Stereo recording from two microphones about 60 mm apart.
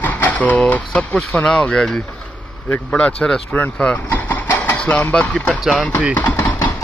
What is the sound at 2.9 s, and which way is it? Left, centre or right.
Speech, centre.